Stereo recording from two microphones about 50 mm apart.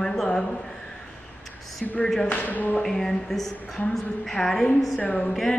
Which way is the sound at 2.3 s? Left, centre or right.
Left.